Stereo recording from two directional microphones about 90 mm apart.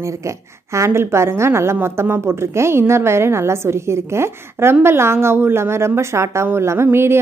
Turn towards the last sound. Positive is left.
turn(degrees=-30)  # may be behind; listen again after turning